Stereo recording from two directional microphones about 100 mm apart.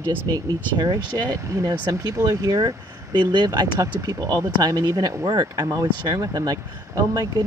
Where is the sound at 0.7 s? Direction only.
40° right (ahead or behind).